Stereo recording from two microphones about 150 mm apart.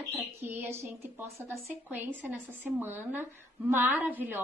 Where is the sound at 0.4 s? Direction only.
15° right (ahead or behind).